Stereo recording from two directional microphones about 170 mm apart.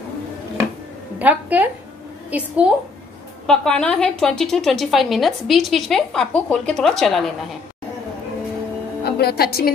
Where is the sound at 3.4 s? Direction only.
5° left (ahead or behind).